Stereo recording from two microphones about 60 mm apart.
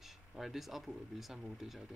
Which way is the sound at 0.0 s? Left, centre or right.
Centre.